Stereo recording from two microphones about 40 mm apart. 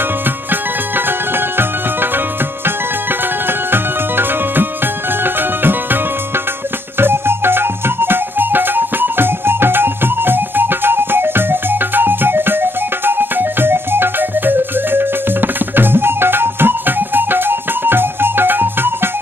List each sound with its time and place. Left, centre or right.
3.4 s music: right
7.0 s music: right